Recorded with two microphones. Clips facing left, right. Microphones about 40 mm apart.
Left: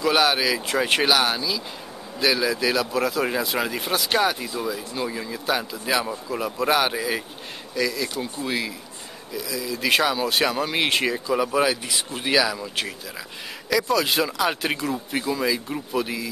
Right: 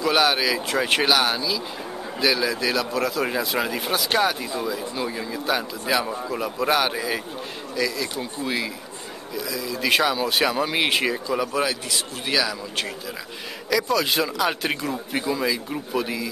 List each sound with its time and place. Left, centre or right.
0.0 s speech: centre